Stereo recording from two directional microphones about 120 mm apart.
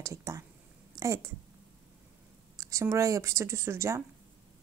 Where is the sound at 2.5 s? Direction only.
30° right (ahead or behind).